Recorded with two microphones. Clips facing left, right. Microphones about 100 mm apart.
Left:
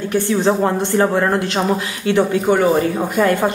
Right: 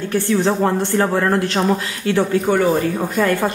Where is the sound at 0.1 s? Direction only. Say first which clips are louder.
Left 1 dB; 20° left (ahead or behind).